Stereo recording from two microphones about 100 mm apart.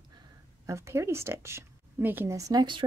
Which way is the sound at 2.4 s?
35° right (ahead or behind).